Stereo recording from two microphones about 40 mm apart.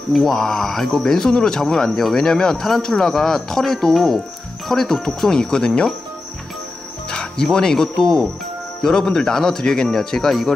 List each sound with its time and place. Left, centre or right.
0.1 s speech: centre
5.0 s speech: centre
7.1 s music: left
7.5 s speech: centre